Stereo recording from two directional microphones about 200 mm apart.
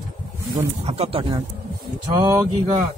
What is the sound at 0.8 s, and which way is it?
Speech, 30° right (ahead or behind).